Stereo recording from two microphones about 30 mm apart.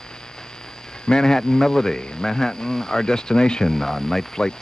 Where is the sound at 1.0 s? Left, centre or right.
Left.